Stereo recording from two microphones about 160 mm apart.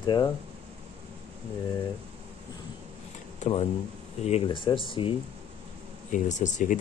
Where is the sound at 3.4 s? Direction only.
40° left (ahead or behind).